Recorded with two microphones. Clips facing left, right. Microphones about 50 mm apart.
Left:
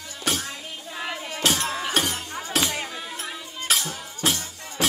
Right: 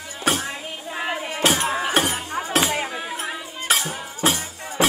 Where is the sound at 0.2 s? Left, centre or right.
Right.